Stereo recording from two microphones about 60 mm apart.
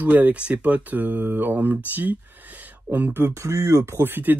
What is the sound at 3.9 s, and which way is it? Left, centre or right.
Speech, right.